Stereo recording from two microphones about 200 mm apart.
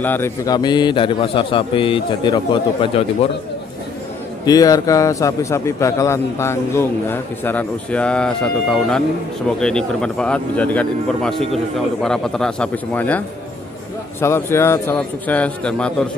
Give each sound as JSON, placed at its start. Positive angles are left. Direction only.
{"t": 0.0, "sound": "a man's voice", "side_deg": 10}
{"t": 4.5, "sound": "a man's voice", "side_deg": 20}
{"t": 14.2, "sound": "a man's voice", "side_deg": 10}